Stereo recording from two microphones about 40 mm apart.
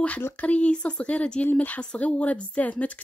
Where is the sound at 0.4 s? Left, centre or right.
Left.